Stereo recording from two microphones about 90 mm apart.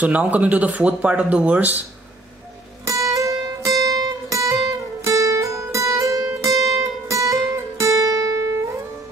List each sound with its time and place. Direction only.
0.0 s speech: 15° right (ahead or behind)
2.8 s music: 35° right (ahead or behind)